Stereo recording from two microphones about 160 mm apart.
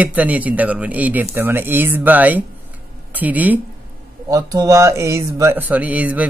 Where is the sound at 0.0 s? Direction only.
10° right (ahead or behind).